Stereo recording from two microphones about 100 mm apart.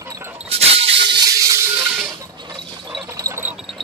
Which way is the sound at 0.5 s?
80° right.